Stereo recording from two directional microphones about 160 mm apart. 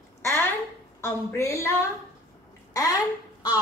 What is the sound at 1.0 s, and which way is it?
Speech, 15° left (ahead or behind).